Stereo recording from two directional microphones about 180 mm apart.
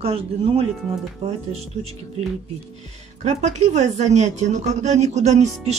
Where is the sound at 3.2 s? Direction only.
40° right (ahead or behind).